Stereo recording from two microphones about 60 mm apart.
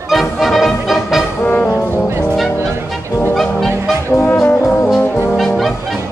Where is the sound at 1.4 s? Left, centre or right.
Left.